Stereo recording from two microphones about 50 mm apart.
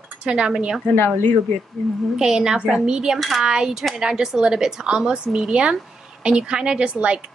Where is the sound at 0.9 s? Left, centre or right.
Left.